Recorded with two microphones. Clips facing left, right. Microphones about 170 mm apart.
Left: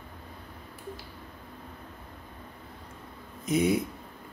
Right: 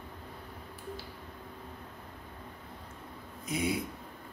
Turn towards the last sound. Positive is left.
turn(degrees=20)  # may be behind; listen again after turning